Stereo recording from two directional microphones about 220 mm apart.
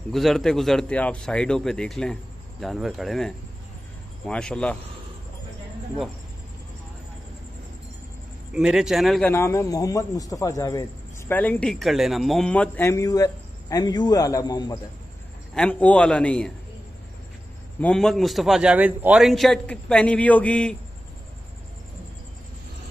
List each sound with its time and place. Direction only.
0.1 s a man's voice: centre (ahead or behind)
8.5 s a man's voice: 5° right (ahead or behind)
9.3 s a man's voice: 15° left (ahead or behind)
15.5 s a man's voice: 5° left (ahead or behind)
17.7 s a man's voice: 5° left (ahead or behind)